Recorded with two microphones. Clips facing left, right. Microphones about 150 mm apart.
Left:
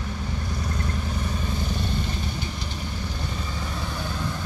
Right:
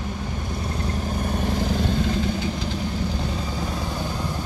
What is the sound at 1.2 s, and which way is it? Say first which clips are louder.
Vehicle: right 5 dB; 65° right (ahead or behind).